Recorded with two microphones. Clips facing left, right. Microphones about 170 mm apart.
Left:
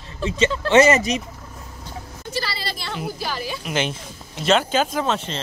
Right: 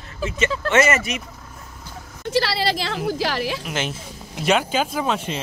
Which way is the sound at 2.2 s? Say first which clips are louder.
Right 8 dB; 80° right.